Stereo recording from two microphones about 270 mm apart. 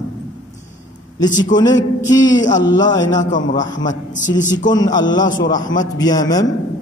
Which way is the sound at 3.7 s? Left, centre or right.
Centre.